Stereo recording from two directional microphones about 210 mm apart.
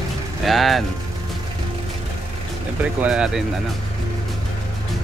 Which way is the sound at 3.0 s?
5° right (ahead or behind).